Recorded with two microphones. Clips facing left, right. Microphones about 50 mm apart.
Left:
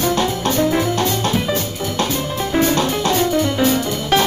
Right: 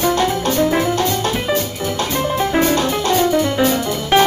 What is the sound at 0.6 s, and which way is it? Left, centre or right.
Music, centre.